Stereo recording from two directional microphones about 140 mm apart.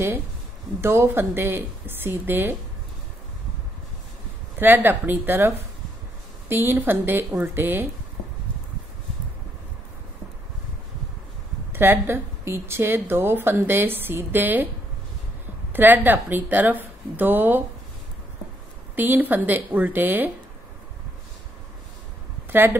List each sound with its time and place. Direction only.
0.7 s a woman's voice: 20° right (ahead or behind)
4.6 s a woman's voice: 15° right (ahead or behind)
6.5 s a woman's voice: 15° right (ahead or behind)
11.7 s a woman's voice: 15° right (ahead or behind)
15.7 s a woman's voice: 15° right (ahead or behind)
18.9 s a woman's voice: 15° right (ahead or behind)